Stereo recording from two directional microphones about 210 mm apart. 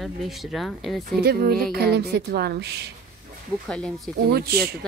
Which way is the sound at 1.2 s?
45° right (ahead or behind).